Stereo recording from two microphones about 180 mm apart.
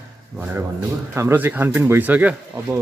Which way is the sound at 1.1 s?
15° right (ahead or behind).